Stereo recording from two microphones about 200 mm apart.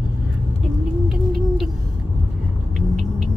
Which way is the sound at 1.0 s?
Centre (ahead or behind).